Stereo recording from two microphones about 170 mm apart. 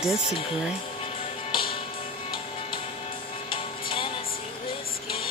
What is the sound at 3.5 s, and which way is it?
Music, 30° left (ahead or behind).